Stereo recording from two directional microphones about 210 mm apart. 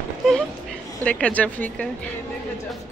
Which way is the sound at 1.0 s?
5° left (ahead or behind).